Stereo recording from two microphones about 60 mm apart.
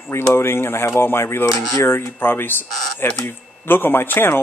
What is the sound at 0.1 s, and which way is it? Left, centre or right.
A man's voice, left.